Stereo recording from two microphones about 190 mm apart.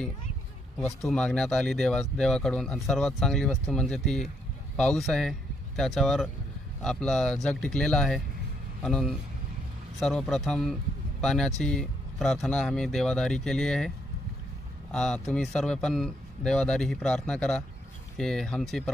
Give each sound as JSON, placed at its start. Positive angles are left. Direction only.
{"t": 0.7, "sound": "speech", "side_deg": 5}